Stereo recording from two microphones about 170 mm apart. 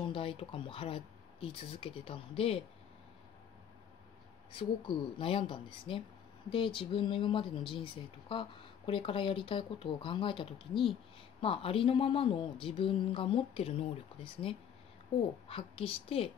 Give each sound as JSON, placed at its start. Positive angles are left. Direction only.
{"t": 0.0, "sound": "speech", "side_deg": 30}
{"t": 4.5, "sound": "speech", "side_deg": 30}